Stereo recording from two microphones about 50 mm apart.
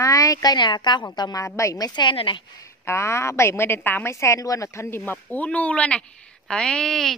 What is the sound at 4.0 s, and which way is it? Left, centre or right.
Speech, left.